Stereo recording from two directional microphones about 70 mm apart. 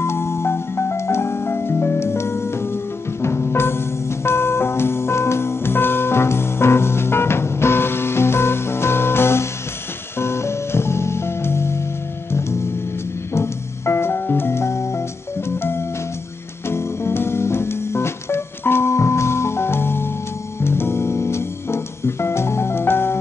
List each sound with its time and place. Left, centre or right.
0.0 s music: left